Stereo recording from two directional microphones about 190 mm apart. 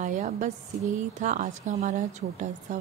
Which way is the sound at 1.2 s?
40° right (ahead or behind).